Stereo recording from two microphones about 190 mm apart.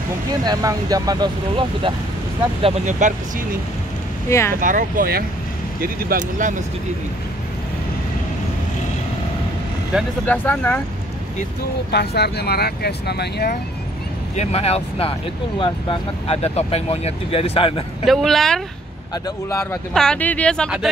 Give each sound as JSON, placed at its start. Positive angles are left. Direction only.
{"t": 0.5, "sound": "speech", "side_deg": -20}
{"t": 2.9, "sound": "speech", "side_deg": -40}
{"t": 4.3, "sound": "speech", "side_deg": 15}
{"t": 4.6, "sound": "speech", "side_deg": -45}
{"t": 10.2, "sound": "speech", "side_deg": 10}
{"t": 11.9, "sound": "speech", "side_deg": 60}
{"t": 14.3, "sound": "speech", "side_deg": 35}
{"t": 18.0, "sound": "speech", "side_deg": 0}
{"t": 19.2, "sound": "speech", "side_deg": 15}
{"t": 19.9, "sound": "speech", "side_deg": 5}